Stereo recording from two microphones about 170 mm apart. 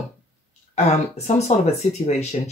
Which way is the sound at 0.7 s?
40° left (ahead or behind).